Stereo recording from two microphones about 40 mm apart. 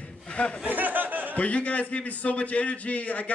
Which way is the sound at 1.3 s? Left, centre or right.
Left.